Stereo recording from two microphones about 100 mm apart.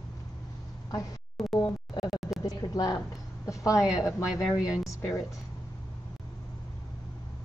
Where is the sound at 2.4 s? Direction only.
40° left (ahead or behind).